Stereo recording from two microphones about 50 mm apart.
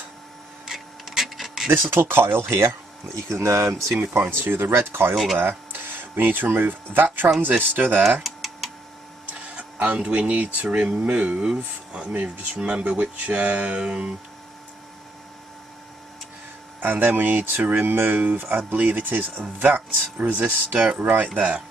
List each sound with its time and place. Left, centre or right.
0.7 s rub: centre
1.7 s speech: right
3.2 s speech: right
4.2 s speech: right
5.1 s speech: centre
5.4 s speech: right
8.2 s tick-tock: centre
9.3 s speech: right
11.9 s a sound: centre
12.5 s speech: centre
12.9 s speech: right
16.8 s speech: right